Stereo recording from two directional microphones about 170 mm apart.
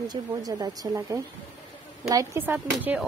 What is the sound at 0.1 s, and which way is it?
Speech, 20° right (ahead or behind).